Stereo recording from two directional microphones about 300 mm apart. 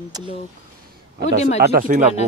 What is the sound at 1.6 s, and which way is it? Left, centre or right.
Speech, right.